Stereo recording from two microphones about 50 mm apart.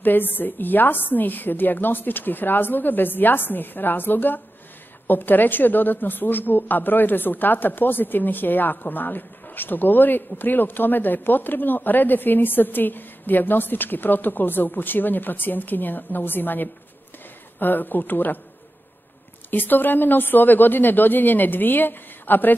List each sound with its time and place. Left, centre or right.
0.0 s a woman's voice: left
19.5 s a woman's voice: left